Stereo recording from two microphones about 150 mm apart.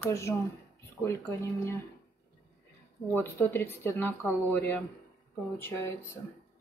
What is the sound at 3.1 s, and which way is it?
Speech, 15° left (ahead or behind).